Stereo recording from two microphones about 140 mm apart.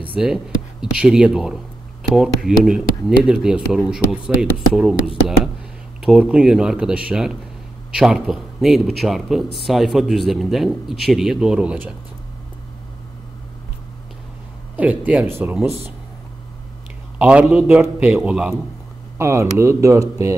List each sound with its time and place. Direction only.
0.1 s speech: 5° right (ahead or behind)
14.8 s speech: 10° right (ahead or behind)
17.2 s speech: 10° right (ahead or behind)
19.1 s speech: 20° right (ahead or behind)